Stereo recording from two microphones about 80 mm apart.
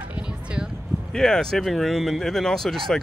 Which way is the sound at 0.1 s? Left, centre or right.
Centre.